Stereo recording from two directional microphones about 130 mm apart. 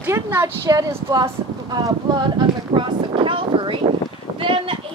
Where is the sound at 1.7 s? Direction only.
35° right (ahead or behind).